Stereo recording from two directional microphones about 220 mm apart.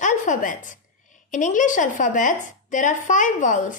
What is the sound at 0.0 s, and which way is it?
A woman's voice, 35° left (ahead or behind).